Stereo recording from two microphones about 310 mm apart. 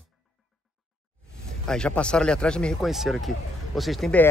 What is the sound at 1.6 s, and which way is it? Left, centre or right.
Speech, centre.